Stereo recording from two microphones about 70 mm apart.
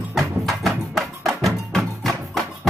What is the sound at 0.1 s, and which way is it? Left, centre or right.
Music, centre.